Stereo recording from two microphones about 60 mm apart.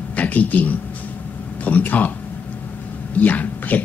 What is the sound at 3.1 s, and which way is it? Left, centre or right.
Speech, left.